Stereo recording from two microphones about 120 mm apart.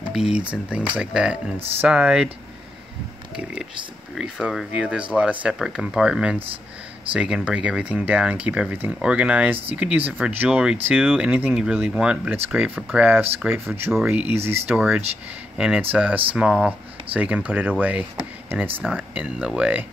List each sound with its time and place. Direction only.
0.1 s speech: 5° right (ahead or behind)
4.1 s speech: 5° right (ahead or behind)